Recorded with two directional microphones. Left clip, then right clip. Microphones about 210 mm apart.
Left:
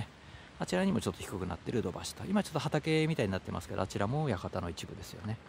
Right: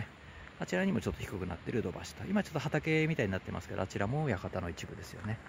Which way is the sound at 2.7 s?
20° left (ahead or behind).